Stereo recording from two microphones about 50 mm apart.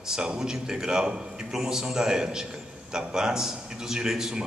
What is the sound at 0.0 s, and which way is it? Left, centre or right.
A man's voice, centre.